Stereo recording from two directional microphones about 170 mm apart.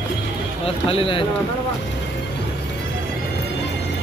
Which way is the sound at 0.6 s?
35° left (ahead or behind).